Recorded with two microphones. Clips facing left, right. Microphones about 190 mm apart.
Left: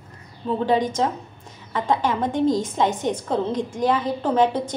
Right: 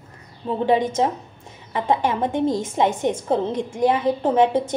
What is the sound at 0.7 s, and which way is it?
A woman's voice, 25° right (ahead or behind).